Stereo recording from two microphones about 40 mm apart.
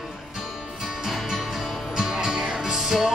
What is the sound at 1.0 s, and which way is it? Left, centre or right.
Music, centre.